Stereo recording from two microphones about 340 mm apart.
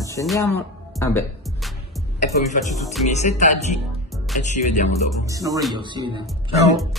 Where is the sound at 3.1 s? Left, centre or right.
Left.